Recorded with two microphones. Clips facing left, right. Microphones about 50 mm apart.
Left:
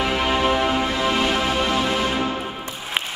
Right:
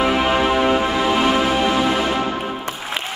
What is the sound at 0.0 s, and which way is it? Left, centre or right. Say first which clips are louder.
Music: right 3 dB; centre.